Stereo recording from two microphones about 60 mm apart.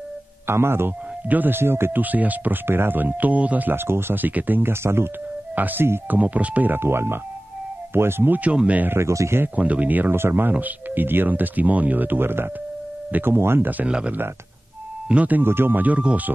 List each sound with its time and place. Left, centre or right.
0.5 s speech: right
2.0 s speech: right
4.8 s speech: right
5.6 s speech: right
8.5 s speech: right
8.8 s speech: right
9.6 s speech: right
13.8 s speech: centre
15.4 s speech: right